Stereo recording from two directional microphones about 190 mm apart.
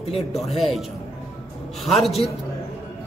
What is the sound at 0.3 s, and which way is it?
Speech, centre (ahead or behind).